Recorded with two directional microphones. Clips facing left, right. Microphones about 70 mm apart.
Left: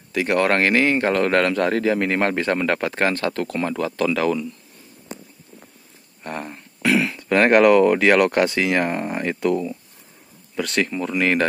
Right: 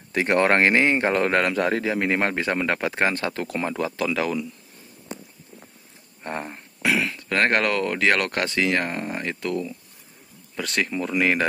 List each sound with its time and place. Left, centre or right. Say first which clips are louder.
0.1 s speech: even; right; by 4.5 s centre
6.2 s a sound: left 1 dB; right
6.8 s speech: left 4 dB; centre
10.5 s speech: left 3 dB; centre